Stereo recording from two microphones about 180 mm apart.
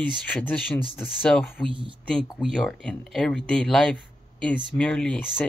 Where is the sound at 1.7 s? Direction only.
25° right (ahead or behind).